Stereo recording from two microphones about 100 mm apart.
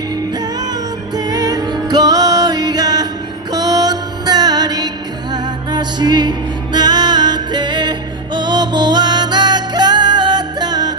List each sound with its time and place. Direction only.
1.1 s music: 45° right (ahead or behind)